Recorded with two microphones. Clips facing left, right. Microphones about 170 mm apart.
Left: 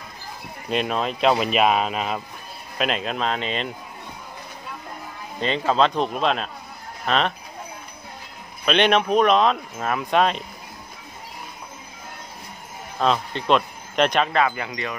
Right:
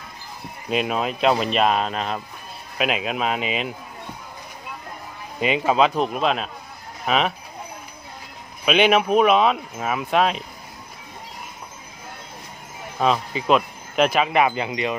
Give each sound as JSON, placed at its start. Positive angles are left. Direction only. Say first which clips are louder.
{"t": 0.7, "sound": "speech", "louder": "right 1 dB", "side_deg": -5}
{"t": 5.4, "sound": "speech", "louder": "right 1 dB", "side_deg": -10}
{"t": 8.6, "sound": "speech", "louder": "right 1 dB", "side_deg": -5}
{"t": 13.0, "sound": "speech", "louder": "right 1 dB", "side_deg": -5}
{"t": 14.3, "sound": "wind chime", "louder": "right 2 dB", "side_deg": -20}